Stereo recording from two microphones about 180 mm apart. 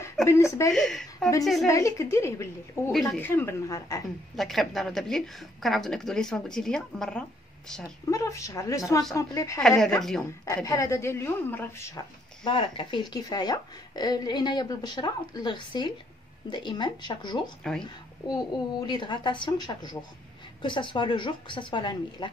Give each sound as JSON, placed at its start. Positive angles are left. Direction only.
{"t": 0.0, "sound": "speech", "side_deg": 15}
{"t": 0.7, "sound": "a woman's voice", "side_deg": 0}
{"t": 1.7, "sound": "a woman's voice", "side_deg": 15}
{"t": 2.9, "sound": "a woman's voice", "side_deg": 0}
{"t": 3.3, "sound": "a woman's voice", "side_deg": 15}
{"t": 4.4, "sound": "a woman's voice", "side_deg": 0}
{"t": 8.1, "sound": "a woman's voice", "side_deg": 15}
{"t": 9.6, "sound": "a woman's voice", "side_deg": 0}
{"t": 10.4, "sound": "a woman's voice", "side_deg": 20}
{"t": 12.4, "sound": "a woman's voice", "side_deg": 25}